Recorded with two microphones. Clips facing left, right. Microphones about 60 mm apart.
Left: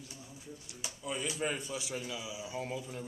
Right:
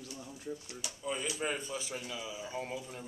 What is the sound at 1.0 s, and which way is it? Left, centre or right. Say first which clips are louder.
A man's voice: even; centre.